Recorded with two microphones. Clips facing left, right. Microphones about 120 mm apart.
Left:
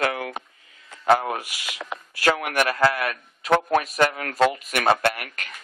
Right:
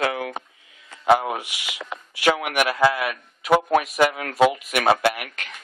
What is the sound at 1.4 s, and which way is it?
Speech, 90° right.